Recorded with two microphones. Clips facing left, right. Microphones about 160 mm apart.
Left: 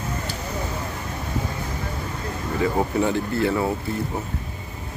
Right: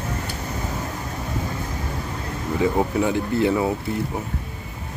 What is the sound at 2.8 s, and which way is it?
Speech, 5° right (ahead or behind).